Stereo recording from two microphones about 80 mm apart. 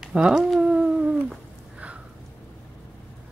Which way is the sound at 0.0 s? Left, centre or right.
Centre.